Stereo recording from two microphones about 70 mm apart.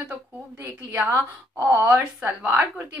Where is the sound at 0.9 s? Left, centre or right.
Right.